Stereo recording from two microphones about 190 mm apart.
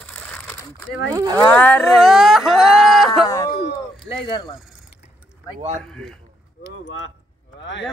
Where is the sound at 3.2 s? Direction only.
20° left (ahead or behind).